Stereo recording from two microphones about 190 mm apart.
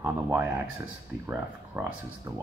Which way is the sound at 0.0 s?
10° right (ahead or behind).